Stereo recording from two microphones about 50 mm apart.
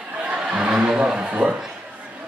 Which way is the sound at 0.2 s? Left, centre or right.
Centre.